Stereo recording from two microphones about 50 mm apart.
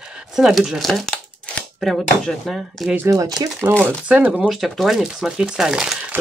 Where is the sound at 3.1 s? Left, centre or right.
Right.